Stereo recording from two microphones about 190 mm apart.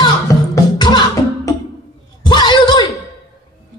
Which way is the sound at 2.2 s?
25° left (ahead or behind).